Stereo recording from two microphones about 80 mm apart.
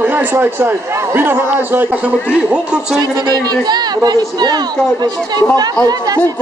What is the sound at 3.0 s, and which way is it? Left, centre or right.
A man's voice, right.